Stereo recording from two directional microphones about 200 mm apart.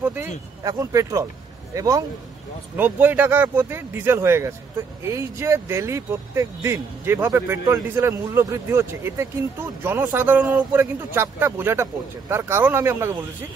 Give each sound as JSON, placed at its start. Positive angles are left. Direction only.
{"t": 0.0, "sound": "speech", "side_deg": -10}